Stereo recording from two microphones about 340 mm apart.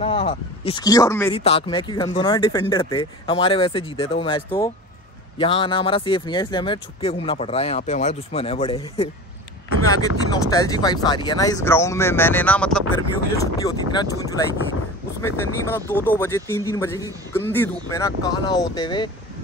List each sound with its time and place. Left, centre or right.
0.0 s speech: centre
15.7 s speech: centre